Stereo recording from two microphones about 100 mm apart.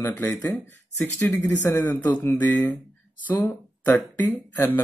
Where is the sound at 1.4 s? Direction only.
20° left (ahead or behind).